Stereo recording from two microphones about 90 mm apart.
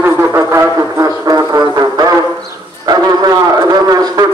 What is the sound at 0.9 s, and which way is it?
Music, 40° right (ahead or behind).